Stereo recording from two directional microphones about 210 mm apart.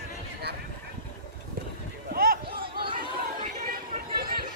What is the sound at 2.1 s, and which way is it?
Run, 45° right (ahead or behind).